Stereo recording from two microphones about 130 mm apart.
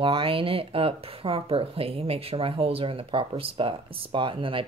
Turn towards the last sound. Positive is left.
turn(degrees=-40)  # may be behind; listen again after turning